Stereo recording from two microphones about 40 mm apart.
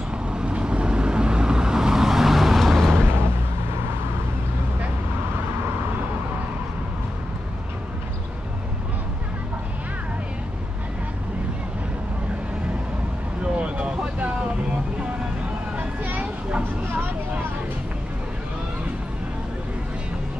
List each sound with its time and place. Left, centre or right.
0.3 s vehicle: right; by 3.0 s centre
3.0 s vehicle: right
13.4 s vehicle: right
15.7 s vehicle: right
16.2 s a sound: right